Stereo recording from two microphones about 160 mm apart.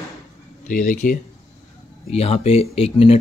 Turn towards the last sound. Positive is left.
turn(degrees=35)  # may be behind; listen again after turning